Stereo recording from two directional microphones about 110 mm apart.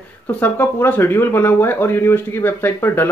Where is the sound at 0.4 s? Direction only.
15° left (ahead or behind).